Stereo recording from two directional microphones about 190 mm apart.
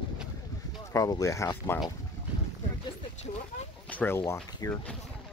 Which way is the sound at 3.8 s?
10° left (ahead or behind).